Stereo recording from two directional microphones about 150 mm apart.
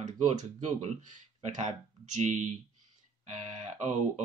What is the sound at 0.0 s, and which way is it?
Speech, 55° right (ahead or behind).